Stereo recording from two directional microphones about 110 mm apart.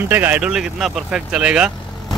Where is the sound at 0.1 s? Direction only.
20° right (ahead or behind).